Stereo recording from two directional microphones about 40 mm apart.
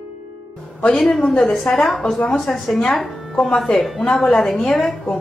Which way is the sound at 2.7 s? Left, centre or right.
Centre.